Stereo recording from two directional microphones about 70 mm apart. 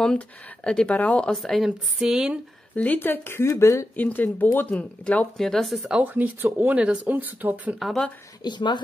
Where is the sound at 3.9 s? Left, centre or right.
Left.